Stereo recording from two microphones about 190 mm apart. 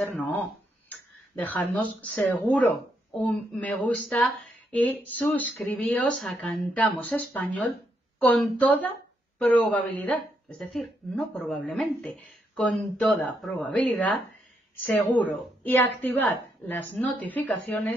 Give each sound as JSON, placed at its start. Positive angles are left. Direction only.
{"t": 0.0, "sound": "a woman's voice", "side_deg": 0}
{"t": 15.1, "sound": "speech", "side_deg": 10}